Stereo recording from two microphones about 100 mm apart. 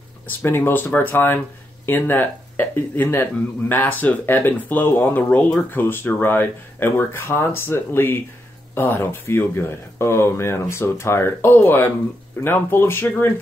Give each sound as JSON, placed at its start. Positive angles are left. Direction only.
{"t": 0.4, "sound": "speech", "side_deg": 20}